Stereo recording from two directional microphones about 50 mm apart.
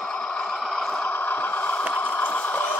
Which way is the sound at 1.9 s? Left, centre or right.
Left.